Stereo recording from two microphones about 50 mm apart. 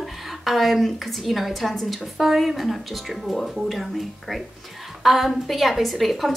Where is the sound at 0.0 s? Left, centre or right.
Centre.